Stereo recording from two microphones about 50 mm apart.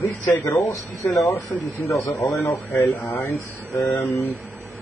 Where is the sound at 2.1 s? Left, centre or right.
Left.